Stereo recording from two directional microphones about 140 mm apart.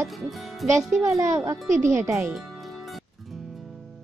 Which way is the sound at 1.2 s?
20° right (ahead or behind).